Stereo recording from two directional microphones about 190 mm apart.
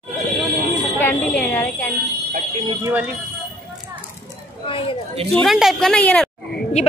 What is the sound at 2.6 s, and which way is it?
Speech, 15° right (ahead or behind).